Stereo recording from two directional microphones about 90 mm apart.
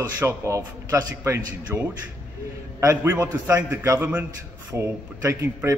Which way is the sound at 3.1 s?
30° right (ahead or behind).